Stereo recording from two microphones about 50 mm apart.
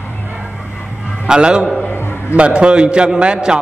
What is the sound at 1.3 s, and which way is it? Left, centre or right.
A man's voice, centre.